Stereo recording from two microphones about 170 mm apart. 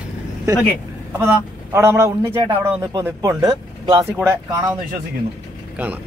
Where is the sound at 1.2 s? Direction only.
15° right (ahead or behind).